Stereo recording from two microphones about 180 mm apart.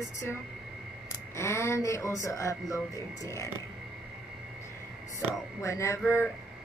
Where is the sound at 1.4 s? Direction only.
15° left (ahead or behind).